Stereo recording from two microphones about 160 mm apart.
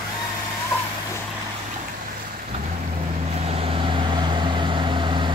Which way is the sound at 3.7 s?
30° right (ahead or behind).